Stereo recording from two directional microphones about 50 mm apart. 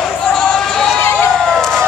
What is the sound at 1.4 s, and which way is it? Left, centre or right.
Emergency vehicle, centre.